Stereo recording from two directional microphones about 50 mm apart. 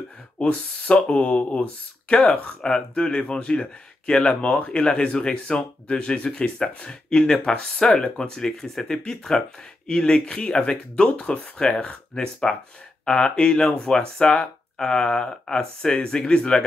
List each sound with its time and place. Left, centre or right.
0.4 s speech: left
11.1 s speech: left